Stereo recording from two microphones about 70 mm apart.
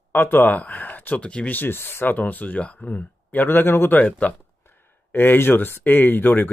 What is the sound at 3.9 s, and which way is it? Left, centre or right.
Speech, centre.